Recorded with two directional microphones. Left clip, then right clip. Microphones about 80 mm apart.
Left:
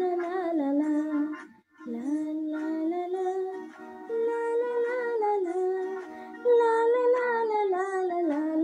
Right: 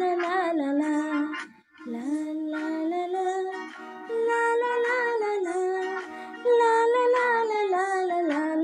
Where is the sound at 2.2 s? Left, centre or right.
Right.